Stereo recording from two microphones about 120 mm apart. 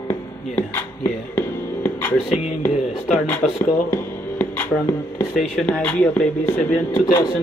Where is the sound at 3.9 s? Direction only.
15° left (ahead or behind).